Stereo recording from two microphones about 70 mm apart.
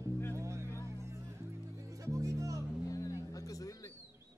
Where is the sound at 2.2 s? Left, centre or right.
Right.